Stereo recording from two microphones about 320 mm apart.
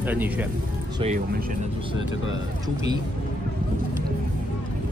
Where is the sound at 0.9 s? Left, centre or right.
Right.